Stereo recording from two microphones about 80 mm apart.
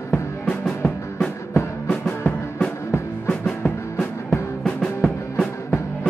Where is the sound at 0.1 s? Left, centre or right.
Centre.